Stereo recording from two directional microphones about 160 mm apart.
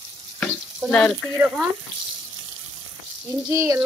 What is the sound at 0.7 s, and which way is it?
Speech, 5° left (ahead or behind).